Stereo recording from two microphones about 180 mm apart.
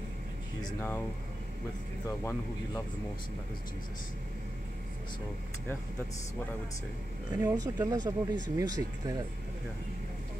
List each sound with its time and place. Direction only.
0.6 s speech: 15° left (ahead or behind)
2.0 s speech: 15° left (ahead or behind)
7.4 s speech: 20° right (ahead or behind)